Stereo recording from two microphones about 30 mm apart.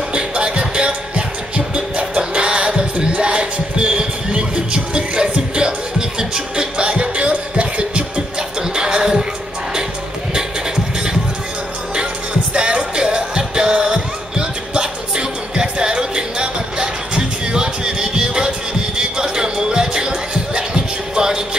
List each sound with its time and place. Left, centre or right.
0.1 s music: right
8.7 s music: right
12.5 s music: right